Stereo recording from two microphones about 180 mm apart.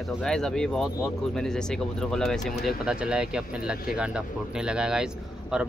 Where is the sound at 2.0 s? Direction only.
Centre (ahead or behind).